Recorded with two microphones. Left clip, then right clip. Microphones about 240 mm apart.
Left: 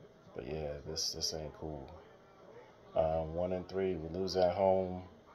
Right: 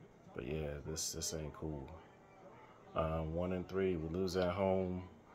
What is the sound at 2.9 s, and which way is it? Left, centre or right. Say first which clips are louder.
Speech: left 6 dB; centre.